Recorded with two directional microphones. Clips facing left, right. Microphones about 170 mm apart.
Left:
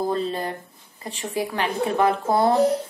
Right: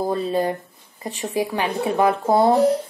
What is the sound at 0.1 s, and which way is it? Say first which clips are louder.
A woman's voice: right 4 dB; 15° right (ahead or behind).